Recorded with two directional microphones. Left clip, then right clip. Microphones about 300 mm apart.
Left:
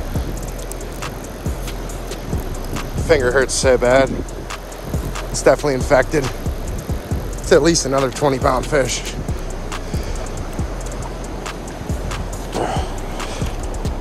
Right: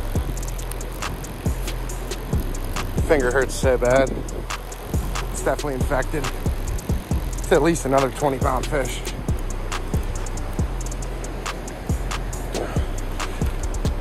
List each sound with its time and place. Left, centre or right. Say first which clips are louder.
2.7 s music: left 4 dB; centre
3.6 s speech: left 4 dB; centre
5.4 s speech: left 10 dB; centre
7.4 s speech: left 5 dB; centre